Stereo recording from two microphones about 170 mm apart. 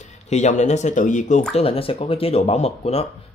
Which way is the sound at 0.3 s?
45° left (ahead or behind).